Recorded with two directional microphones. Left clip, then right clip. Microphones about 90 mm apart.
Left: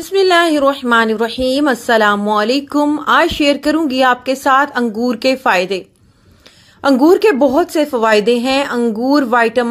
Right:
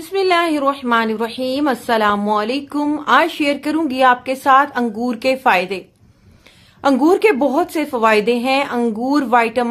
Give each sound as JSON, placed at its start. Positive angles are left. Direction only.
{"t": 0.1, "sound": "a woman's voice", "side_deg": 50}
{"t": 2.4, "sound": "a woman's voice", "side_deg": 50}